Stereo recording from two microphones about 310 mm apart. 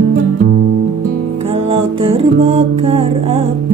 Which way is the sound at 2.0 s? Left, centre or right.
Centre.